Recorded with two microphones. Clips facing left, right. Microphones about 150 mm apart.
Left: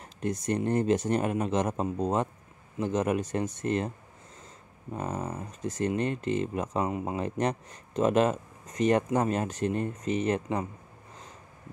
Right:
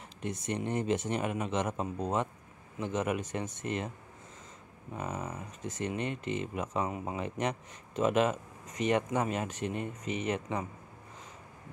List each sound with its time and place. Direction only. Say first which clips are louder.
0.2 s speech: left 6 dB; 40° left (ahead or behind)
4.9 s speech: left 4 dB; 35° left (ahead or behind)